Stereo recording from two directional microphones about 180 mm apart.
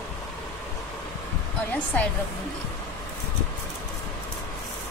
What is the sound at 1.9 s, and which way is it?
Speech, 10° left (ahead or behind).